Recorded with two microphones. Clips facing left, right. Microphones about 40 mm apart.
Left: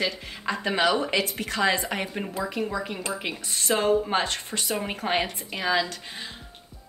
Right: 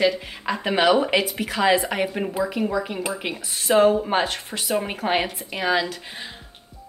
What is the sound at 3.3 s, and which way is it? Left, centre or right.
A woman's voice, centre.